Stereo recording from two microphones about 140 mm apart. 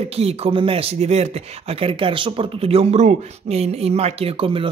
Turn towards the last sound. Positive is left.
turn(degrees=-40)  # may be behind; listen again after turning